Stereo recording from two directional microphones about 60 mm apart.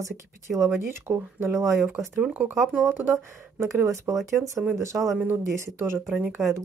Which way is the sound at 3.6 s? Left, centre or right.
Right.